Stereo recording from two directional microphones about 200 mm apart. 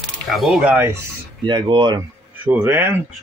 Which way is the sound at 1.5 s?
25° right (ahead or behind).